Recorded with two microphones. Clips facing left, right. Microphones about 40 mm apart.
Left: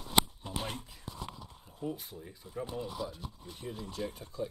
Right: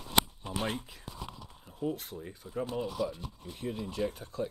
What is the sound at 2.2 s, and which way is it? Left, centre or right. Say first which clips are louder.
Speech: right 4 dB; right.